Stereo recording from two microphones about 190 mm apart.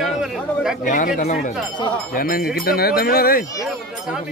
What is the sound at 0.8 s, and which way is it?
Speech, 45° left (ahead or behind).